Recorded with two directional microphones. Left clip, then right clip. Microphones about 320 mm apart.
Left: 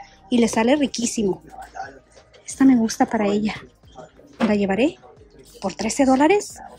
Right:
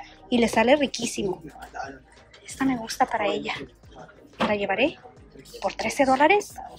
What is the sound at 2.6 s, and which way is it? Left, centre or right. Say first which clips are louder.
A woman's voice: left 6 dB; centre.